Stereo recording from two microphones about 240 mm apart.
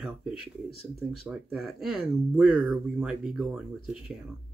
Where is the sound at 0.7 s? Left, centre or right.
Right.